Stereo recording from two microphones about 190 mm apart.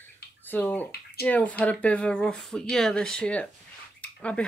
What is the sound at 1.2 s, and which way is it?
Speech, 10° left (ahead or behind).